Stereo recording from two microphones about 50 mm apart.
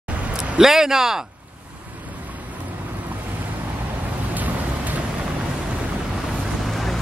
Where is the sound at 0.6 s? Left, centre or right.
Centre.